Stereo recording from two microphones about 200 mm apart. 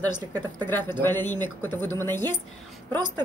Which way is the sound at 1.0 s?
10° left (ahead or behind).